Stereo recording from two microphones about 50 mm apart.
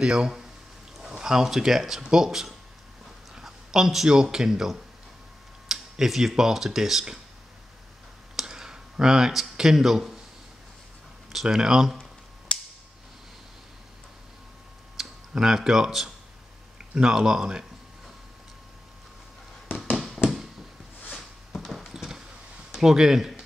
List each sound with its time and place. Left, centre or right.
0.0 s a man's voice: centre
8.4 s a sound: centre
11.5 s speech: centre
12.5 s a sound: left
15.0 s speech: centre
21.5 s horse: centre
22.8 s speech: centre